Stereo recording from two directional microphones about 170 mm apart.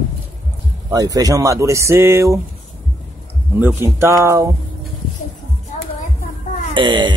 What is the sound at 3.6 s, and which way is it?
Speech, 15° right (ahead or behind).